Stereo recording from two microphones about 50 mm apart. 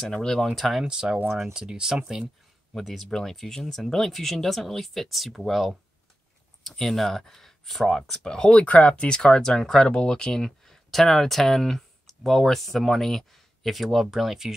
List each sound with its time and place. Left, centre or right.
0.0 s speech: centre
0.6 s speech: centre
0.8 s speech: centre
2.7 s speech: centre
6.6 s speech: centre
8.6 s speech: left
9.1 s speech: centre